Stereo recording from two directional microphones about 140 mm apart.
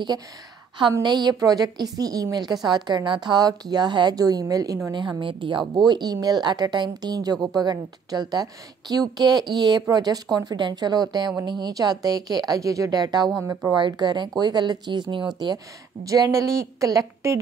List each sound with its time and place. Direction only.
1.0 s a woman's voice: 30° right (ahead or behind)